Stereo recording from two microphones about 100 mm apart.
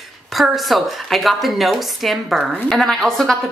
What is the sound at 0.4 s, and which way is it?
Speech, centre (ahead or behind).